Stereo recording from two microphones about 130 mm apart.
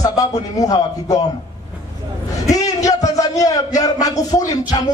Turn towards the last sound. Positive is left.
turn(degrees=30)  # may be behind; listen again after turning